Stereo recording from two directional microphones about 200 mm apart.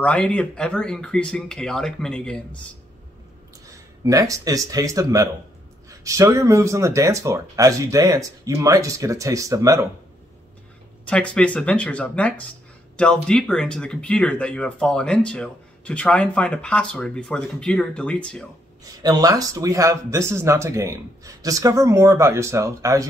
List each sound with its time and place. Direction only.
0.0 s speech: 5° left (ahead or behind)
4.0 s speech: 15° right (ahead or behind)
11.1 s speech: 5° left (ahead or behind)
18.9 s speech: 20° right (ahead or behind)